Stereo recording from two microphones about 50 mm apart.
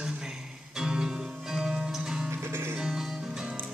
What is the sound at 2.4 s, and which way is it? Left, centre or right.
Music, right.